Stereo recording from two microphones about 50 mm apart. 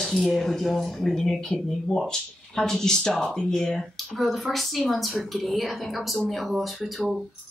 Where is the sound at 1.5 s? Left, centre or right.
Centre.